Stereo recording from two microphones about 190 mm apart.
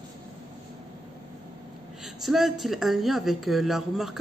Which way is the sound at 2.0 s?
Centre (ahead or behind).